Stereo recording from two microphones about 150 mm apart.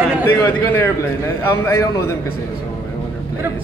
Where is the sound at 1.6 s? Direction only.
20° left (ahead or behind).